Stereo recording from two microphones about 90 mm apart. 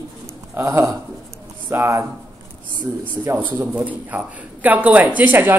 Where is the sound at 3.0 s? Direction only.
20° right (ahead or behind).